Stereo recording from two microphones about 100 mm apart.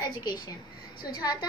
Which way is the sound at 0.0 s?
45° left (ahead or behind).